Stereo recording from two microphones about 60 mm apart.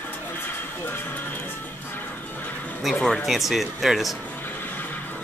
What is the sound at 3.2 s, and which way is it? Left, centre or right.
Speech, centre.